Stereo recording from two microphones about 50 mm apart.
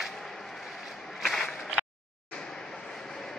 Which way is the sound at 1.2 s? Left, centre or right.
Centre.